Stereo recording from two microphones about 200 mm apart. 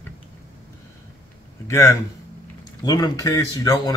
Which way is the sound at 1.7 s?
15° left (ahead or behind).